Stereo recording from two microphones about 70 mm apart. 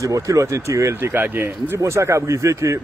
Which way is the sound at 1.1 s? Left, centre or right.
Right.